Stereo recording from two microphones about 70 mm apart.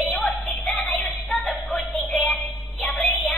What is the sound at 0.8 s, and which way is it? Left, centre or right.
Child singing, centre.